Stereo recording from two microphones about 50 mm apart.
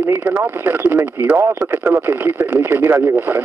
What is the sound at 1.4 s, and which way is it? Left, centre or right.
Speech, right.